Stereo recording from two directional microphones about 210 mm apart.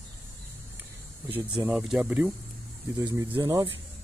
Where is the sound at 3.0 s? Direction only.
20° right (ahead or behind).